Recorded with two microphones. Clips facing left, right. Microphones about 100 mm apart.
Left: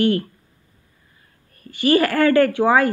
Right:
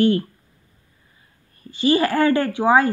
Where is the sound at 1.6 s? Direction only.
25° right (ahead or behind).